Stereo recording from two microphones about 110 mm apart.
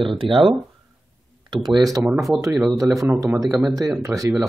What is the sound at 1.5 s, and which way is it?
Speech, 40° right (ahead or behind).